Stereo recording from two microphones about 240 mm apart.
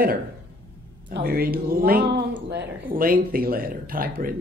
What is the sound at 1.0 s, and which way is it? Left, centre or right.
A woman's voice, right.